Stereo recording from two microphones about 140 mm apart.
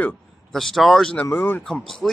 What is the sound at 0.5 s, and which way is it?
Speech, centre (ahead or behind).